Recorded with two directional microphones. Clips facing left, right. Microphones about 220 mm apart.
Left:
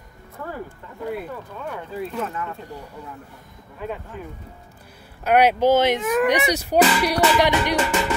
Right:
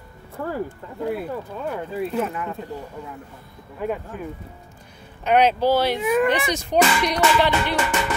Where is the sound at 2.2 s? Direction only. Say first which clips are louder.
Right 3 dB; 15° right (ahead or behind).